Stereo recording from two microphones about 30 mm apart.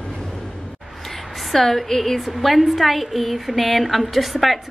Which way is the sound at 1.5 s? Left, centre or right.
Centre.